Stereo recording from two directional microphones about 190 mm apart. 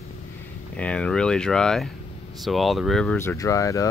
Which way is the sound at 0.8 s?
5° left (ahead or behind).